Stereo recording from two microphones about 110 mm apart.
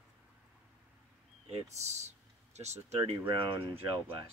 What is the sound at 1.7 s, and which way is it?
Speech, 90° right.